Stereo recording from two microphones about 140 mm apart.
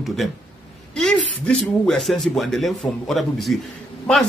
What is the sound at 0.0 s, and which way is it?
Speech, centre (ahead or behind).